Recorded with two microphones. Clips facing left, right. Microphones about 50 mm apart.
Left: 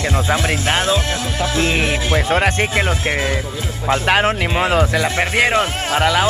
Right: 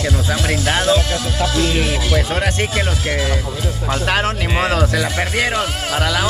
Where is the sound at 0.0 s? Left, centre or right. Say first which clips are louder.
Left 2 dB; left.